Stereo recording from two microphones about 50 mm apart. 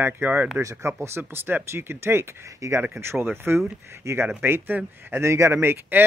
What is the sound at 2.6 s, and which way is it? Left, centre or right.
Speech, right.